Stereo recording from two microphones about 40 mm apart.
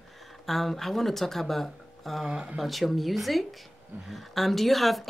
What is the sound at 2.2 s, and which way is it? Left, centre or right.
Speech, centre.